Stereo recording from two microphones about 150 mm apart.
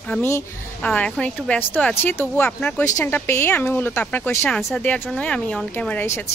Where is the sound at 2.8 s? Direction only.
20° left (ahead or behind).